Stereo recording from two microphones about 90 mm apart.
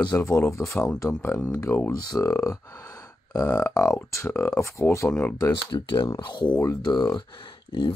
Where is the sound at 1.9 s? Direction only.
45° left (ahead or behind).